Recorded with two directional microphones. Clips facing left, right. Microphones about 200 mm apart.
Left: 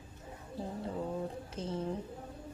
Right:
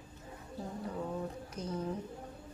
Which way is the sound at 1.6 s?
25° left (ahead or behind).